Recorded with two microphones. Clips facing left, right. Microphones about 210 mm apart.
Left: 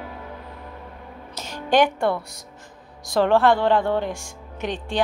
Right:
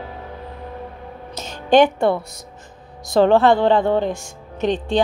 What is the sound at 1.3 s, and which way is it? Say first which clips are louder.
Music: right 6 dB; 20° right (ahead or behind).